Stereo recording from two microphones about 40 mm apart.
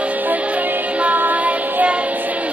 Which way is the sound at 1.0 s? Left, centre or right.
Right.